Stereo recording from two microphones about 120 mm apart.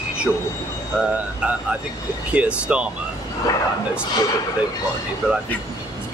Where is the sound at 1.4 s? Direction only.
10° right (ahead or behind).